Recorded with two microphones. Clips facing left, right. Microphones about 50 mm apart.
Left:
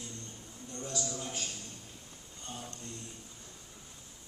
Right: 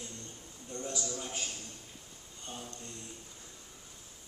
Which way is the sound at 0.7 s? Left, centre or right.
Centre.